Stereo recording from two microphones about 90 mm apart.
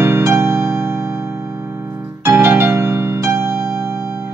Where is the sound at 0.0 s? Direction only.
30° right (ahead or behind).